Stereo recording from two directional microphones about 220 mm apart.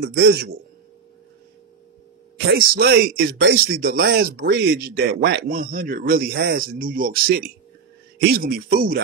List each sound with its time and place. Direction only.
0.0 s speech: 45° right (ahead or behind)
2.3 s speech: 45° right (ahead or behind)